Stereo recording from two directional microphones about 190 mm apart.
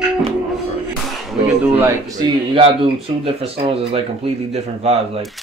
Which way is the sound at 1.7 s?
10° right (ahead or behind).